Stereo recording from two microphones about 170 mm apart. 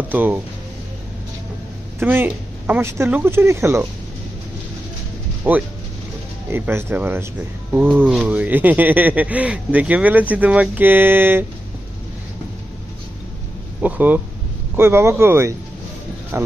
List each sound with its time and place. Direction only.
0.1 s speech: 10° right (ahead or behind)
2.0 s speech: 10° right (ahead or behind)
5.5 s speech: 10° right (ahead or behind)
13.8 s speech: 10° right (ahead or behind)